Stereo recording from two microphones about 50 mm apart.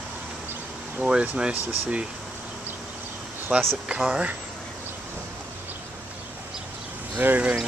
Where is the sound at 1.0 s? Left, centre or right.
Centre.